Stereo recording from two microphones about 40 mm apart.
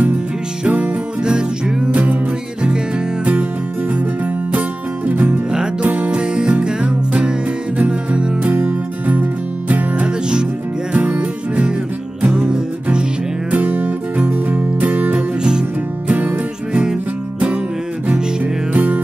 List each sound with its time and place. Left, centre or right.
0.7 s music: right
3.9 s music: right
5.8 s music: right
8.5 s music: right
13.5 s music: right
18.0 s music: right